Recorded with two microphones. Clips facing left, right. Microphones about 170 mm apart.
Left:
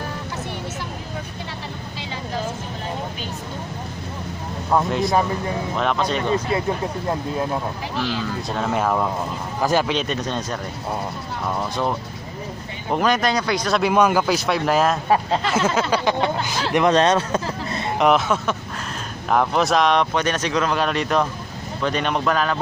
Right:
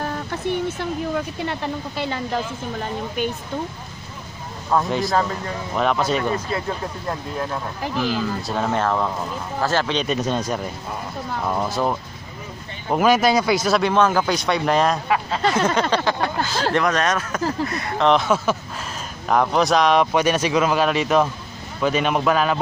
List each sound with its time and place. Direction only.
1.4 s speech: 55° right (ahead or behind)
4.7 s speech: centre (ahead or behind)
8.0 s a man's voice: 5° right (ahead or behind); by 9.8 s 15° left (ahead or behind)
9.8 s speech: 5° left (ahead or behind)
10.2 s speech: 10° right (ahead or behind)
11.7 s speech: 5° right (ahead or behind)
13.8 s speech: 10° left (ahead or behind)
15.5 s a sound: 5° left (ahead or behind)
15.9 s speech: 20° left (ahead or behind)
18.0 s speech: centre (ahead or behind)